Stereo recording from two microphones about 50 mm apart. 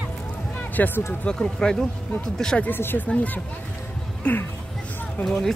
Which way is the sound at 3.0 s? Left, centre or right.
Left.